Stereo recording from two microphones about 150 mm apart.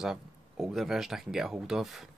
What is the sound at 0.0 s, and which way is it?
Speech, 5° right (ahead or behind).